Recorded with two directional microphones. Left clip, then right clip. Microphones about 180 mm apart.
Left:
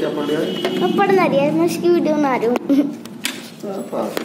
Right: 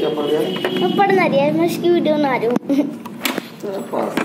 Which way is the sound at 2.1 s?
15° left (ahead or behind).